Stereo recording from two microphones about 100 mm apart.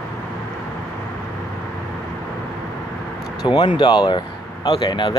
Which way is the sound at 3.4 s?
50° left (ahead or behind).